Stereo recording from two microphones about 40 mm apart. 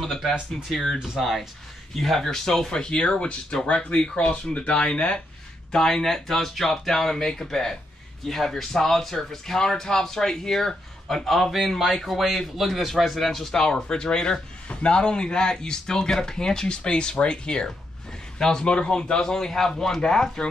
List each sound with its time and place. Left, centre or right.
0.0 s speech: centre
0.9 s speech: centre
2.0 s speech: centre
13.7 s speech: left